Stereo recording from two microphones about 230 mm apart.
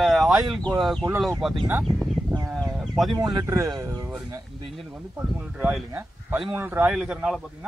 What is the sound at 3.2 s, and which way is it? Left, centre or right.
Speech, centre.